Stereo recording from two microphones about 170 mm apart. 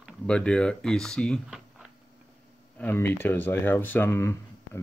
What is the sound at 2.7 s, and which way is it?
Speech, 10° left (ahead or behind).